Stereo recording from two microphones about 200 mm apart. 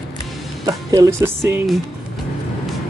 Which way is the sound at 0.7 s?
15° right (ahead or behind).